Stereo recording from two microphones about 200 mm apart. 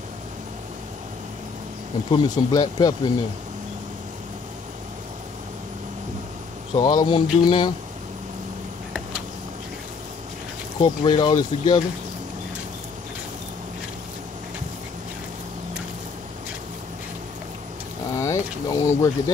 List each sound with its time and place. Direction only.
2.0 s speech: 20° left (ahead or behind)
6.7 s speech: 20° left (ahead or behind)
10.8 s speech: 20° left (ahead or behind)
18.1 s vehicle: 15° left (ahead or behind)